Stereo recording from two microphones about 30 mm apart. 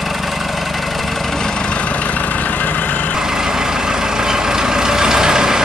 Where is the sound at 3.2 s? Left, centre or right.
Centre.